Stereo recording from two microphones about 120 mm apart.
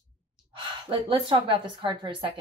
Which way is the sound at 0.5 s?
45° right (ahead or behind).